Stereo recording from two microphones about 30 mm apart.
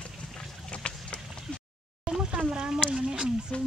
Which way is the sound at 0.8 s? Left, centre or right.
Left.